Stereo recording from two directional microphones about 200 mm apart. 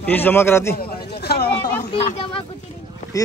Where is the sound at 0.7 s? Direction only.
50° left (ahead or behind).